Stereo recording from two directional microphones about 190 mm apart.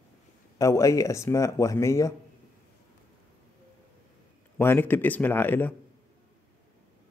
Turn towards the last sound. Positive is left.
turn(degrees=10)  # may be behind; listen again after turning